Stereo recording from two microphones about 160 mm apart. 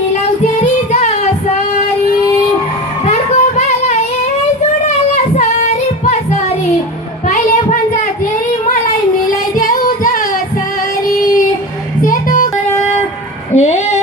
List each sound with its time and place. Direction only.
3.1 s a sound: 45° left (ahead or behind)
4.8 s child singing: 50° left (ahead or behind)
7.2 s child singing: 55° left (ahead or behind)
9.6 s singing: 60° left (ahead or behind)
12.0 s music: 55° left (ahead or behind)
13.6 s a sound: 45° left (ahead or behind)